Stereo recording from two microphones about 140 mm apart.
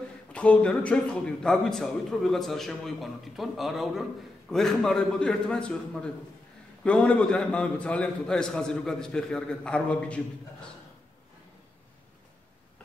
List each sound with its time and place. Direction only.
0.3 s a man's voice: 10° left (ahead or behind)